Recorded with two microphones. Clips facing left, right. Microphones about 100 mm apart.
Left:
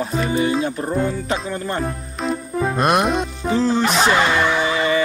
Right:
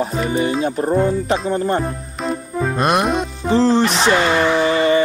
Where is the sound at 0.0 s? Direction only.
25° right (ahead or behind).